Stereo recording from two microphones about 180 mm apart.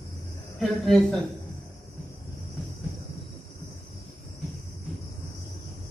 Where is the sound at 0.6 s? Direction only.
Centre (ahead or behind).